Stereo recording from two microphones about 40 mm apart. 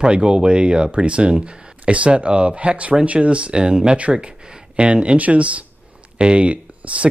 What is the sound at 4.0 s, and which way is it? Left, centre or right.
Speech, right.